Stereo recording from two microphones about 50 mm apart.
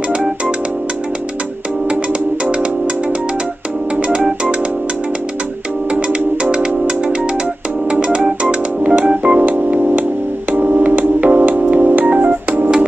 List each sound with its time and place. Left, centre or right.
4.1 s music: centre
5.9 s music: right
8.5 s organ: right
9.4 s music: right